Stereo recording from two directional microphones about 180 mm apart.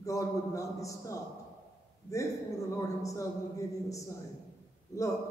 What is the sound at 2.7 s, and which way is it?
A man's voice, 15° left (ahead or behind).